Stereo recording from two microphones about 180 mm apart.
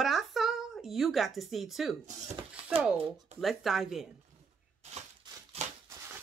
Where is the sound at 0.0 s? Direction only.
Centre (ahead or behind).